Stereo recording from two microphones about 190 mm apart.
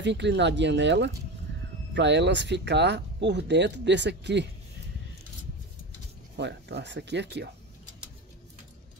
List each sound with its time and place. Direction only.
0.0 s speech: 65° right (ahead or behind)
6.3 s speech: 65° right (ahead or behind)